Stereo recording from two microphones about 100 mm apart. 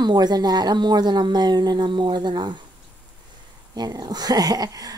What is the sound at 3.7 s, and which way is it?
Speech, 40° right (ahead or behind).